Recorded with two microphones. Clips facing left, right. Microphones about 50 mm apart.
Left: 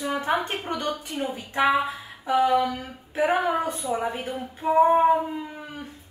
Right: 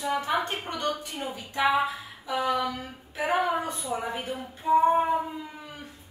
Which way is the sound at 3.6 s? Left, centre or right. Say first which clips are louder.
Left 4 dB; left.